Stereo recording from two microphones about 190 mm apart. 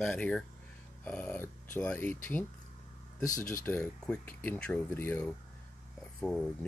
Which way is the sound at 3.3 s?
45° left (ahead or behind).